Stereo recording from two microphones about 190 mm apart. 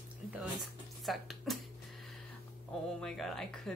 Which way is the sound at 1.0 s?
Centre (ahead or behind).